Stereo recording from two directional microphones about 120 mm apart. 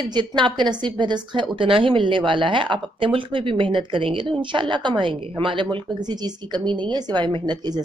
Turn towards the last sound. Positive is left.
turn(degrees=-35)  # may be behind; listen again after turning